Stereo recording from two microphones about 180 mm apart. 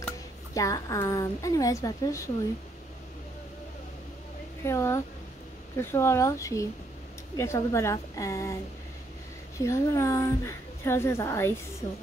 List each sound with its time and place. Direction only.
0.6 s a woman's voice: 20° left (ahead or behind)
4.6 s a woman's voice: 15° left (ahead or behind)
9.6 s a woman's voice: 15° left (ahead or behind)